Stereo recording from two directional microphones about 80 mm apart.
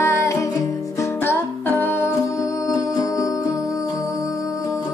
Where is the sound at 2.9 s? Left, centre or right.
Left.